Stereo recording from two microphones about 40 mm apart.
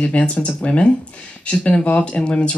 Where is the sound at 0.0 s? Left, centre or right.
Left.